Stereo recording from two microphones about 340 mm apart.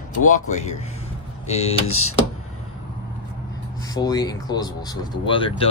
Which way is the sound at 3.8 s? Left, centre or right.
Centre.